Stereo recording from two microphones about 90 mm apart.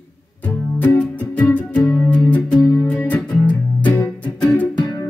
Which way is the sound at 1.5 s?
15° left (ahead or behind).